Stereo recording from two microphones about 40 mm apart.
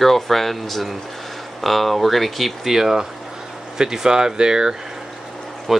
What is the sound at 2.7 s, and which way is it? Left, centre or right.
Speech, centre.